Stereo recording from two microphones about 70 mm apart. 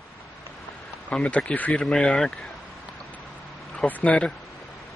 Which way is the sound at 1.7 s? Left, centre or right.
Centre.